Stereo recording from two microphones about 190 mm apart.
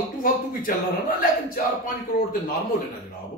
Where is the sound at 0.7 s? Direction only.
45° left (ahead or behind).